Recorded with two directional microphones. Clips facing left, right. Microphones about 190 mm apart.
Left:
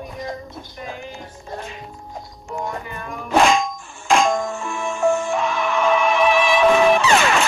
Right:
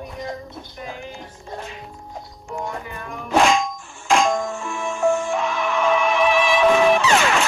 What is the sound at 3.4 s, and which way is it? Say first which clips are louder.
Music: left 1 dB; 55° left (ahead or behind).